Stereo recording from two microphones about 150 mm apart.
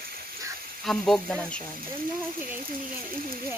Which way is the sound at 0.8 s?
Centre (ahead or behind).